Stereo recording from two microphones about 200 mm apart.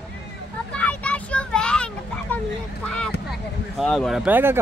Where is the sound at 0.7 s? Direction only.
5° left (ahead or behind).